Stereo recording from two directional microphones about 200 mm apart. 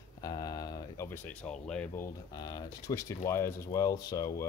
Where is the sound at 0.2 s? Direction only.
20° left (ahead or behind).